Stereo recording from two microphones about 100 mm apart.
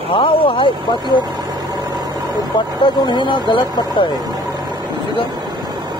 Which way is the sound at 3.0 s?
50° left (ahead or behind).